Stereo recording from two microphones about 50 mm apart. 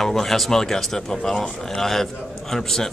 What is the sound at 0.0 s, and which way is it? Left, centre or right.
Speech, centre.